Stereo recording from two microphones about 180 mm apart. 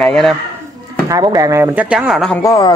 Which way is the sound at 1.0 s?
20° right (ahead or behind).